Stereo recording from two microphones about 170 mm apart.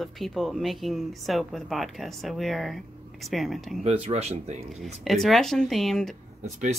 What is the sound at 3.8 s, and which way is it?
Speech, 35° right (ahead or behind).